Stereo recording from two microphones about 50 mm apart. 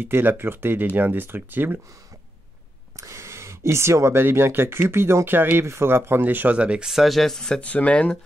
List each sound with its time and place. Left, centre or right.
0.0 s speech: right
3.0 s speech: right
5.7 s speech: right
6.2 s speech: right
6.6 s speech: right
6.9 s speech: centre
7.2 s speech: centre
7.6 s speech: left